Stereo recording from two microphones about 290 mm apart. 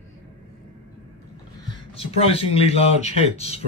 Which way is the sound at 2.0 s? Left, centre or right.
Centre.